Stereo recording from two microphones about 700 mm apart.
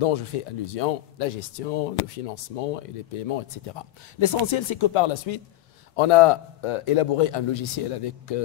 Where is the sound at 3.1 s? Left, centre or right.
Left.